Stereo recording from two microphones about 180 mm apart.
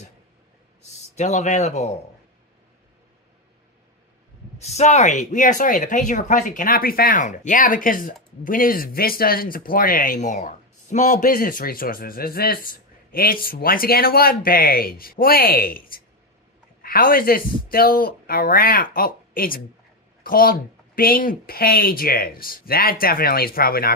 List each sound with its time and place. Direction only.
1.1 s speech: 40° left (ahead or behind)
4.6 s speech: 35° left (ahead or behind); by 23.9 s 55° left (ahead or behind)